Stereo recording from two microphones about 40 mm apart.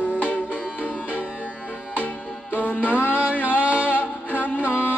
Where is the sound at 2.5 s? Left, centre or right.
Left.